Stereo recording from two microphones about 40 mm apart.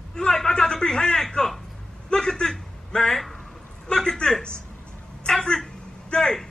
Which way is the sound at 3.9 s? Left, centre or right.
Left.